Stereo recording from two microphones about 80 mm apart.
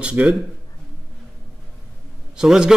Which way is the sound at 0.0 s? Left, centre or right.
Centre.